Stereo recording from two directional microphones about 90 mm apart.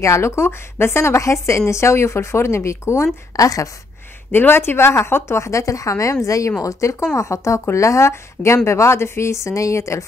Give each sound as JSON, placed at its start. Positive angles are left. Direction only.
{"t": 0.0, "sound": "speech", "side_deg": 30}
{"t": 4.3, "sound": "a woman's voice", "side_deg": 25}